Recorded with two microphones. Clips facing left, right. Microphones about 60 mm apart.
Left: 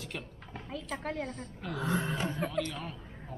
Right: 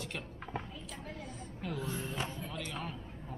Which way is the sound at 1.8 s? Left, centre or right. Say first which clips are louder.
Left 10 dB; left.